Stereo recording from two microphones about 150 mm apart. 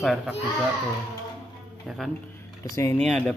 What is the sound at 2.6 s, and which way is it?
Speech, 20° left (ahead or behind).